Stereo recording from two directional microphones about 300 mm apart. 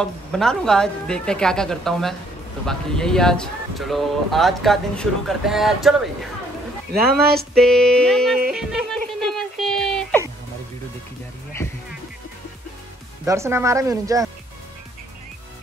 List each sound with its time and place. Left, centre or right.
0.0 s speech: centre
6.9 s speech: right
7.3 s speech: centre
8.5 s music: centre
13.2 s speech: centre